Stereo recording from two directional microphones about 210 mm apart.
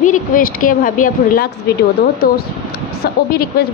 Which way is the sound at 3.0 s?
45° left (ahead or behind).